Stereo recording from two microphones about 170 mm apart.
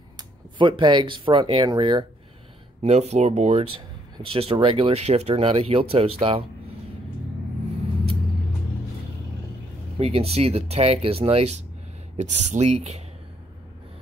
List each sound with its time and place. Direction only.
0.2 s speech: 30° right (ahead or behind)
2.8 s speech: 40° right (ahead or behind)
9.9 s speech: 35° right (ahead or behind)